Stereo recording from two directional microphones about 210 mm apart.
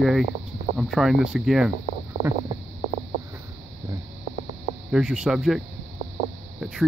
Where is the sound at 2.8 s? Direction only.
30° right (ahead or behind).